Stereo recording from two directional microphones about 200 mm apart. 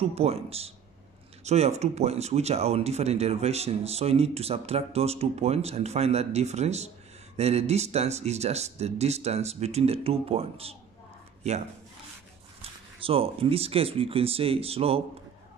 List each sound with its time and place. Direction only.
0.0 s speech: 30° right (ahead or behind)
13.0 s speech: 30° right (ahead or behind)